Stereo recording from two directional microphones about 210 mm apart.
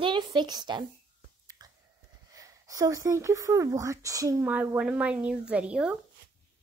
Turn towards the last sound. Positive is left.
turn(degrees=-5)  # may be behind; listen again after turning